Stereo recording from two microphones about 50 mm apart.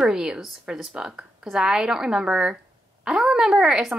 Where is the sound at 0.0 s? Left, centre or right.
Centre.